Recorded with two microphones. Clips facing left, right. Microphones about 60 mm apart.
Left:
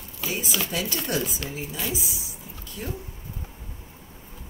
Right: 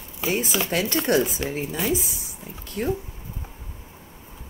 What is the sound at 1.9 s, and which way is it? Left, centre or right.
Speech, right.